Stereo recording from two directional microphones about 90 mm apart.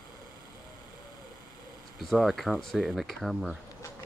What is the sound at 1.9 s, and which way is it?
Speech, centre (ahead or behind).